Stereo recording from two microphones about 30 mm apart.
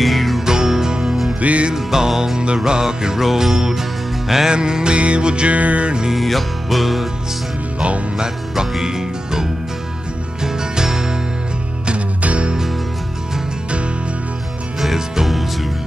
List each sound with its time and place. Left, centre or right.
0.0 s music: centre
0.5 s music: centre
1.4 s music: right
1.8 s music: centre
2.3 s music: right
3.2 s music: centre
4.5 s music: right
5.5 s music: right
6.1 s music: centre
8.8 s music: centre
12.2 s music: right